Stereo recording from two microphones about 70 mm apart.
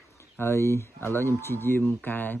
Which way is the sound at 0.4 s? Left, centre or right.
Left.